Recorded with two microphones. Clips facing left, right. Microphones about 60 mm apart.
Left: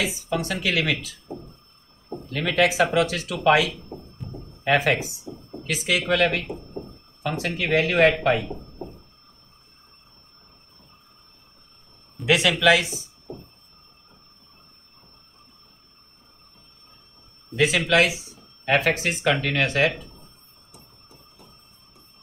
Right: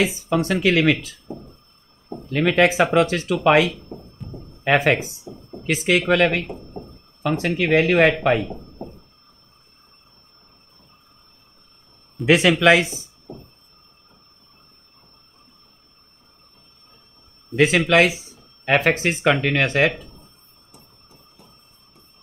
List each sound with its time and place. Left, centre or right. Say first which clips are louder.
0.0 s speech: right 5 dB; right
4.2 s a sound: even; centre
4.6 s speech: right 3 dB; right
12.3 s speech: right 4 dB; right
17.6 s speech: right 4 dB; right